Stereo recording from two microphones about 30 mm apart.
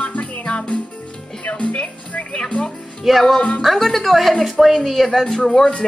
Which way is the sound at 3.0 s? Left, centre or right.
Centre.